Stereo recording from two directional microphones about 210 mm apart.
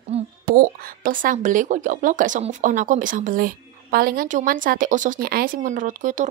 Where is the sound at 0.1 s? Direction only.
30° right (ahead or behind).